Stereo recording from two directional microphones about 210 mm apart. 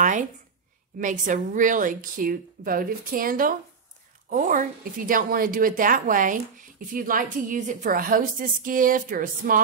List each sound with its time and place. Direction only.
0.9 s a woman's voice: 40° right (ahead or behind)